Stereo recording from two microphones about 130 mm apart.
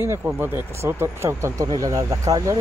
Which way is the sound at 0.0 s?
20° right (ahead or behind).